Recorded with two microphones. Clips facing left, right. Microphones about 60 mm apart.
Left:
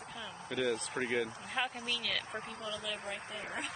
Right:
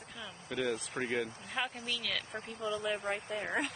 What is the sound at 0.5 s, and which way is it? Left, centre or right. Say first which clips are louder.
Speech: left 1 dB; centre.